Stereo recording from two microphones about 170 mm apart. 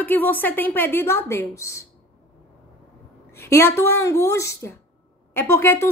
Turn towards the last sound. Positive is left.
turn(degrees=15)  # may be behind; listen again after turning